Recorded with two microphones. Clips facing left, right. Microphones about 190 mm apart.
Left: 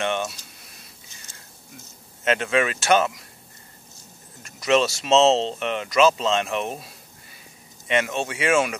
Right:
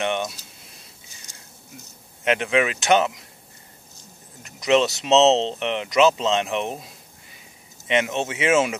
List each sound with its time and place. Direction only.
0.0 s keys jangling: 15° right (ahead or behind)
2.2 s speech: 15° right (ahead or behind)
4.4 s speech: 20° right (ahead or behind)